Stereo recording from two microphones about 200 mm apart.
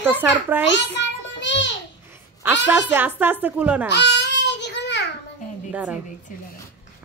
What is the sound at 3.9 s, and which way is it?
Babbling, 60° left (ahead or behind).